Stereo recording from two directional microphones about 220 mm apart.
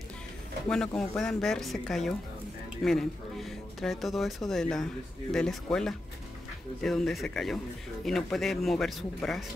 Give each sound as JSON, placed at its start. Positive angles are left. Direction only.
{"t": 0.7, "sound": "speech", "side_deg": 5}